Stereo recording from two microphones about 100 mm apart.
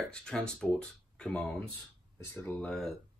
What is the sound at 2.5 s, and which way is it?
Speech, 10° left (ahead or behind).